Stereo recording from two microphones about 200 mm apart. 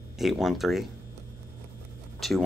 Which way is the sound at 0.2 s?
Centre (ahead or behind).